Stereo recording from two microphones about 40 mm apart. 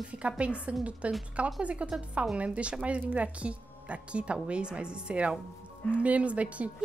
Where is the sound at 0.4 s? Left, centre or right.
Right.